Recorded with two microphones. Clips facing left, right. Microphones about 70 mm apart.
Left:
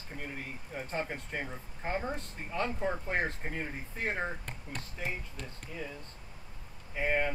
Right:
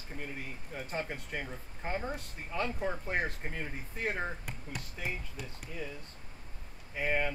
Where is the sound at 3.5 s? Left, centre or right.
Left.